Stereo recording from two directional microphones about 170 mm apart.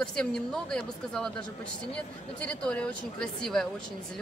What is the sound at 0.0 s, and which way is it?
Speech, 5° left (ahead or behind).